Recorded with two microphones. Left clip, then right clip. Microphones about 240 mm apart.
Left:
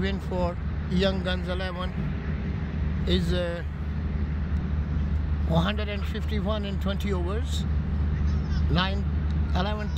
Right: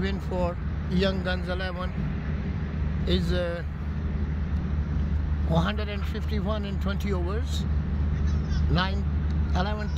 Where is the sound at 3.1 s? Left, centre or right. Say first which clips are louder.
Even; centre.